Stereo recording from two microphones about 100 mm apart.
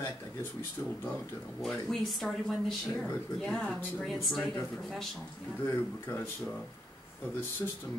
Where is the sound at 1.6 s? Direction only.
5° left (ahead or behind).